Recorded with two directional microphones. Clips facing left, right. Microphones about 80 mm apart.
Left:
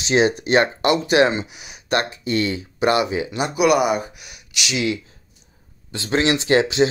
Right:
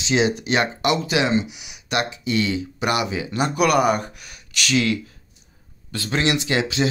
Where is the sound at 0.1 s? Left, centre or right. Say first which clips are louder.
Left 3 dB; left.